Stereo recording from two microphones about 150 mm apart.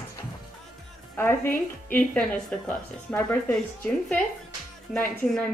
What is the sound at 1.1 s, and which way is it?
A woman's voice, 15° left (ahead or behind).